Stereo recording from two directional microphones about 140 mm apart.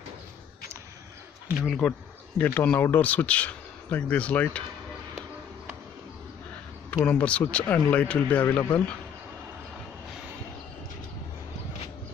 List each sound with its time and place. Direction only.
1.6 s speech: centre (ahead or behind)
1.9 s speech: 10° left (ahead or behind)
6.9 s a man's voice: 10° left (ahead or behind)